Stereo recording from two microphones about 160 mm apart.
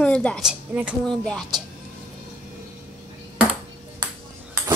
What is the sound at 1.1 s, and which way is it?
Speech, 5° left (ahead or behind).